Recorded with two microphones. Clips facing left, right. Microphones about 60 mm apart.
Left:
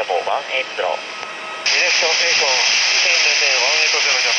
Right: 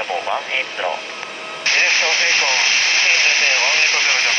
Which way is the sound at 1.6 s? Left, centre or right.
Right.